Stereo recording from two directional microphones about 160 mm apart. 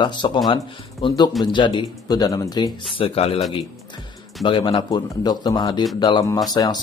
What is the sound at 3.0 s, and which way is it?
Speech, 40° left (ahead or behind).